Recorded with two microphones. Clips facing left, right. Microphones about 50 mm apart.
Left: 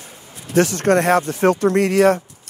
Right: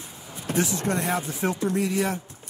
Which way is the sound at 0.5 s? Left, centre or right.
Left.